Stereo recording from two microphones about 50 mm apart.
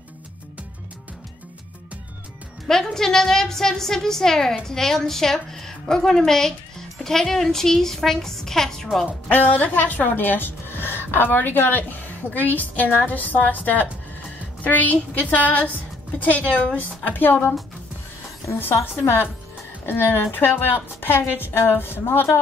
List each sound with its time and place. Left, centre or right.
2.6 s a woman's voice: centre
9.3 s a woman's voice: left
18.5 s a woman's voice: left